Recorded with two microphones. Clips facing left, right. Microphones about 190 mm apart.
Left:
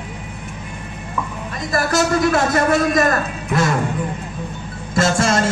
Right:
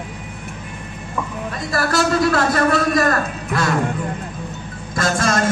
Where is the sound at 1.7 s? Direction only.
20° left (ahead or behind).